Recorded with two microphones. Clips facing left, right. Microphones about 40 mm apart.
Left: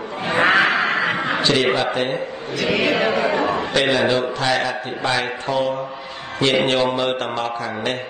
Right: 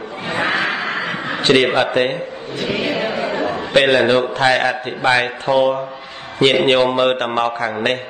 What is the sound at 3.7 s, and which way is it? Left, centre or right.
A man's voice, right.